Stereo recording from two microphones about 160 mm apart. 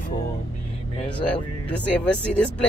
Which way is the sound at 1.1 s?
10° left (ahead or behind).